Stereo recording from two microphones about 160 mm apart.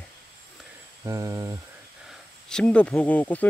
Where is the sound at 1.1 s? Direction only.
20° right (ahead or behind).